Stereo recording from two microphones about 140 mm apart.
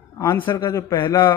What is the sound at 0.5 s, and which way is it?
Speech, 25° left (ahead or behind).